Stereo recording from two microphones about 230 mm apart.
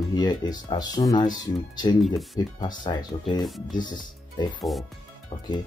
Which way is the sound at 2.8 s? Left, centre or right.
Centre.